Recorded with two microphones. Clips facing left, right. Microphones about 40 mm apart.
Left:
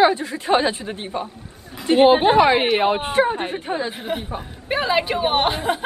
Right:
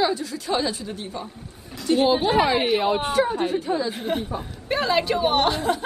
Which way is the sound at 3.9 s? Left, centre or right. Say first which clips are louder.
Right 1 dB; centre.